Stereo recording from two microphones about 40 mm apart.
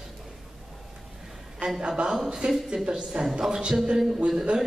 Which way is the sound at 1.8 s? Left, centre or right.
Right.